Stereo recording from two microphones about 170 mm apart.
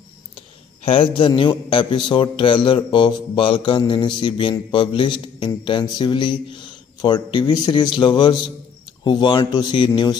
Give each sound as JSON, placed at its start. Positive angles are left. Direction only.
{"t": 0.8, "sound": "a man's voice", "side_deg": 30}